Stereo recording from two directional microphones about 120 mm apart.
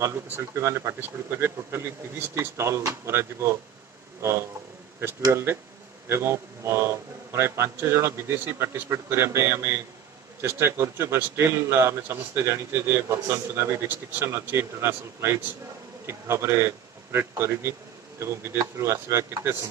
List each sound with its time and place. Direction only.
0.0 s a man's voice: 20° right (ahead or behind)
5.2 s a man's voice: 20° right (ahead or behind)